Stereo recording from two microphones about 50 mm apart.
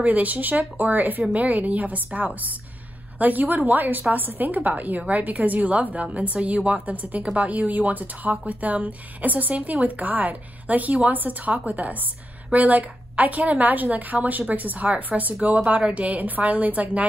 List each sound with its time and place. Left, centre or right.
0.0 s a woman's voice: right